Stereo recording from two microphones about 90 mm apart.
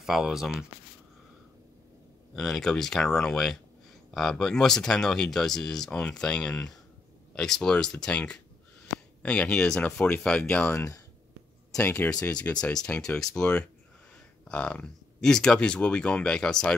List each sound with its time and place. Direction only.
0.0 s speech: 5° right (ahead or behind)
2.3 s speech: 5° left (ahead or behind)
10.6 s speech: 30° left (ahead or behind)
11.7 s speech: 15° left (ahead or behind)